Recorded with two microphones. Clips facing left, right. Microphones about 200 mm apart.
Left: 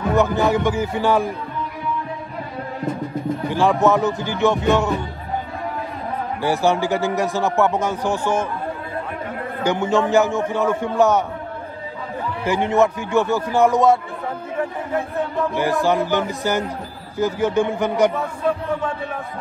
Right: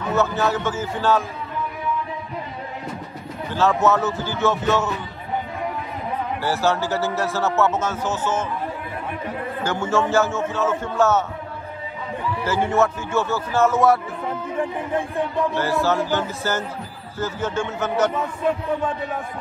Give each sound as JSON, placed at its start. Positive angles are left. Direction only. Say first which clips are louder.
{"t": 0.1, "sound": "a man's voice", "louder": "left 3 dB", "side_deg": 15}
{"t": 3.4, "sound": "a man's voice", "louder": "left 1 dB", "side_deg": 15}
{"t": 6.4, "sound": "a man's voice", "louder": "left 4 dB", "side_deg": 15}
{"t": 9.6, "sound": "a man's voice", "louder": "left 4 dB", "side_deg": 15}
{"t": 12.4, "sound": "a man's voice", "louder": "left 3 dB", "side_deg": 20}
{"t": 15.5, "sound": "a man's voice", "louder": "left 5 dB", "side_deg": 15}